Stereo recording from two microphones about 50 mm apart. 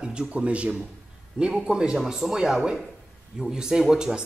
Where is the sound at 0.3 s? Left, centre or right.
Right.